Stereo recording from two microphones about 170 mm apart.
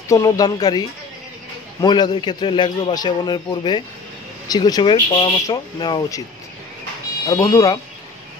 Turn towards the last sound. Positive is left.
turn(degrees=20)  # may be behind; listen again after turning